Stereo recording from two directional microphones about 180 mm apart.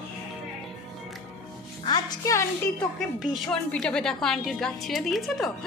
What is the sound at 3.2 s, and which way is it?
A woman's voice, 5° left (ahead or behind).